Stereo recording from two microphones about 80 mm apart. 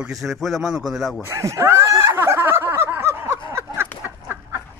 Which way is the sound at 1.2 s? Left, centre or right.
Right.